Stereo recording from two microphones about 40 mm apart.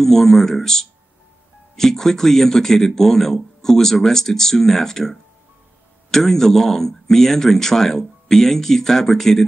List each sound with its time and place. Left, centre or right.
0.0 s speech: centre